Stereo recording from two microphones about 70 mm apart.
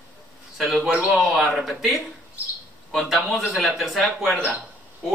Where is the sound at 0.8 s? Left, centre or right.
Centre.